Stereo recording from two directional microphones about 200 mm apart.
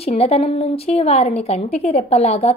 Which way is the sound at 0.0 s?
30° left (ahead or behind).